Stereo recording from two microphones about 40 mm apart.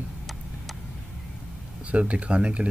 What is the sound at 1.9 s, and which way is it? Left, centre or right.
Speech, right.